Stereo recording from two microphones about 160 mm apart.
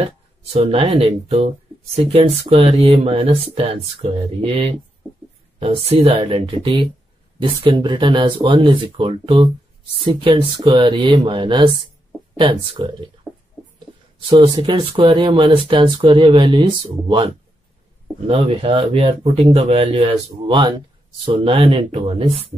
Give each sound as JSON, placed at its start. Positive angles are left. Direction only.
{"t": 0.0, "sound": "speech", "side_deg": -40}
{"t": 14.3, "sound": "speech", "side_deg": -25}